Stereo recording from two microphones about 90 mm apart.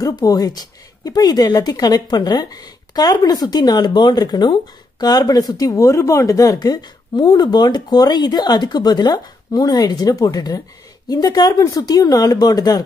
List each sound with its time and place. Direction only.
0.0 s speech: 40° left (ahead or behind)